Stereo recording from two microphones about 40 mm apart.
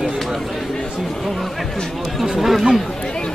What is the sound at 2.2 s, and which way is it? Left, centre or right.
Speech, centre.